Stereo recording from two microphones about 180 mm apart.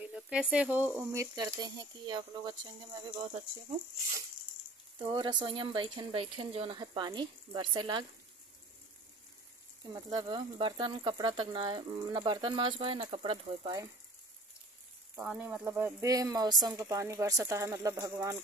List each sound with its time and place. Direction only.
0.0 s a woman's voice: 5° right (ahead or behind); by 2.5 s 25° right (ahead or behind)
4.9 s speech: 25° right (ahead or behind)
9.9 s speech: 25° right (ahead or behind)
15.1 s a woman's voice: 5° right (ahead or behind)